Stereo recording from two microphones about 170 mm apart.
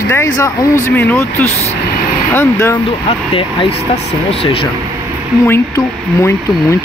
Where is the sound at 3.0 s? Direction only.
30° left (ahead or behind).